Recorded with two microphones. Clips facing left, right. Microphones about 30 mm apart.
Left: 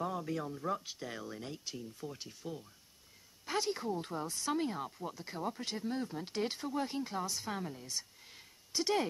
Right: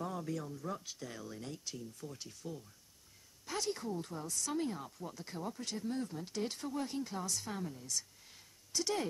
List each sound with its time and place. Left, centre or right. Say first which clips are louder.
0.0 s speech: left 3 dB; centre
0.4 s speech: left 5 dB; left